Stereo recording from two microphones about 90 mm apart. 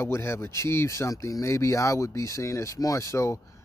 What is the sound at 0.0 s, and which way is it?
Speech, 30° left (ahead or behind).